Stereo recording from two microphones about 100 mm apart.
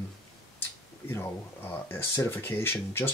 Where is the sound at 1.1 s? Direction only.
25° left (ahead or behind).